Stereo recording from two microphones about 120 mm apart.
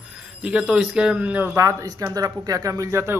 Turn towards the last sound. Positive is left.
turn(degrees=-20)  # may be behind; listen again after turning